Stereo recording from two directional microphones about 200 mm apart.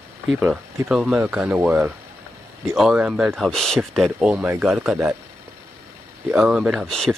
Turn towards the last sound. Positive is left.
turn(degrees=0)  # may be behind; listen again after turning